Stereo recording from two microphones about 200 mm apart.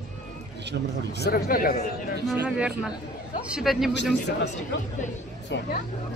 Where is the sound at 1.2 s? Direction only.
45° left (ahead or behind).